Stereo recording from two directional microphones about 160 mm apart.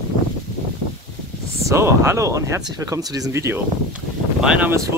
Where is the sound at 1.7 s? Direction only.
15° right (ahead or behind).